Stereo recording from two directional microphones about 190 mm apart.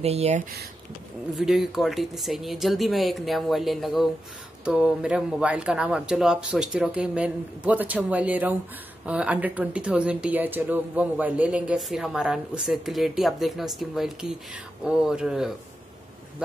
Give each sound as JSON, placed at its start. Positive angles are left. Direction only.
{"t": 0.0, "sound": "speech", "side_deg": -35}
{"t": 1.4, "sound": "speech", "side_deg": 0}